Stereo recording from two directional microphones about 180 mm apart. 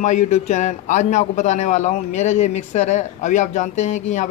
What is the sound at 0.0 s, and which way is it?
Speech, 40° left (ahead or behind).